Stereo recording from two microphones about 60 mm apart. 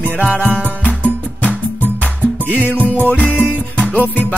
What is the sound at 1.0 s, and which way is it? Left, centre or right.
Music, left.